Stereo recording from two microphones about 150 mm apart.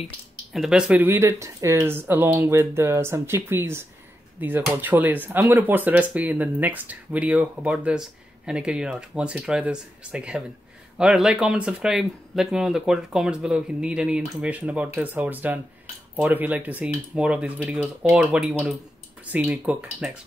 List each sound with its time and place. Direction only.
0.5 s speech: 5° right (ahead or behind)